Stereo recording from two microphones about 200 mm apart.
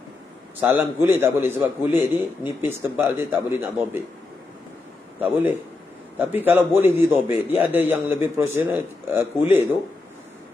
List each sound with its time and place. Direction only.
0.6 s a man's voice: 10° right (ahead or behind)
5.2 s a man's voice: 10° right (ahead or behind)